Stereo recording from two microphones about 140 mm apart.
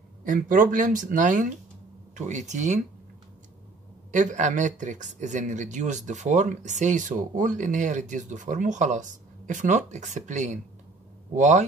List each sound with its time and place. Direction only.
0.2 s speech: 75° right (ahead or behind); by 2.8 s 55° right (ahead or behind)
4.1 s speech: 65° right (ahead or behind)